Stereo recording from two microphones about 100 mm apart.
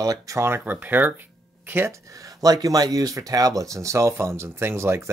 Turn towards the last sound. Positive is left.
turn(degrees=-25)  # may be behind; listen again after turning